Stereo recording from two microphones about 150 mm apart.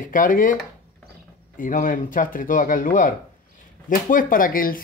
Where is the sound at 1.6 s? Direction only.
65° left (ahead or behind).